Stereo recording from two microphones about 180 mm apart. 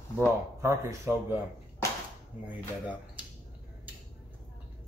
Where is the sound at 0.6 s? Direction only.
15° right (ahead or behind).